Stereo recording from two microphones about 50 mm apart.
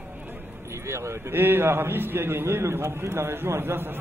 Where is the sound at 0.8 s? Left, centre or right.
Right.